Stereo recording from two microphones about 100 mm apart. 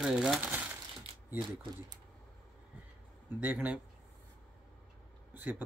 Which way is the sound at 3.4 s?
15° right (ahead or behind).